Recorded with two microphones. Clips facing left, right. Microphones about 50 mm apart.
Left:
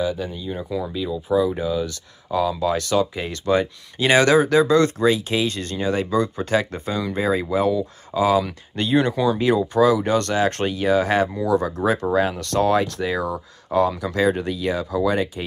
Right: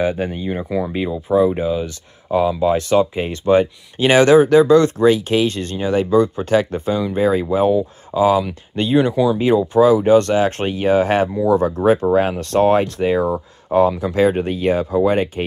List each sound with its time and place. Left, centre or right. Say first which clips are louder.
0.0 s speech: right 5 dB; right
6.9 s speech: right 4 dB; right
7.2 s speech: right 4 dB; right
8.4 s speech: right 3 dB; right
8.9 s speech: right 4 dB; centre
9.8 s speech: right 8 dB; right